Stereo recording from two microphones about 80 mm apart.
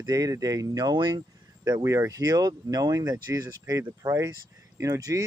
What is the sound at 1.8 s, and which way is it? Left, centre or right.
Speech, right.